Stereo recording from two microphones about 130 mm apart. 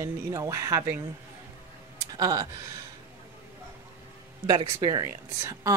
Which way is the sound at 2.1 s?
25° right (ahead or behind).